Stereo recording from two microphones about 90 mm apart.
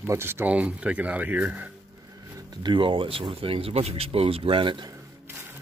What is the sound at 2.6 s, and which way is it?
Speech, 65° right (ahead or behind).